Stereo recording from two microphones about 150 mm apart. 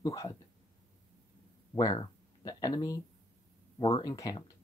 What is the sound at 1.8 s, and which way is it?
Speech, 25° left (ahead or behind).